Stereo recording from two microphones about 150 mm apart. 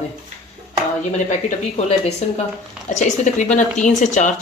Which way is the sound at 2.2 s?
50° left (ahead or behind).